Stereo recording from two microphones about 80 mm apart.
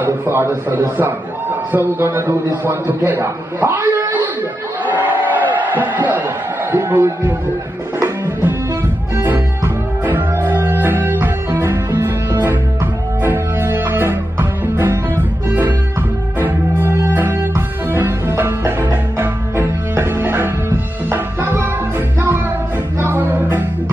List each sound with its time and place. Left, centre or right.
0.0 s a man's voice: right
4.8 s a sound: right
6.7 s a man's voice: right
9.1 s music: right
13.2 s music: right
16.3 s music: right
22.9 s music: right